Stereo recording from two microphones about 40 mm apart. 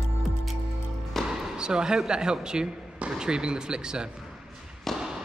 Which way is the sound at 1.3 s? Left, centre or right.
Right.